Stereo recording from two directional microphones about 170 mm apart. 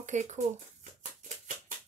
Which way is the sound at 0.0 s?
45° right (ahead or behind).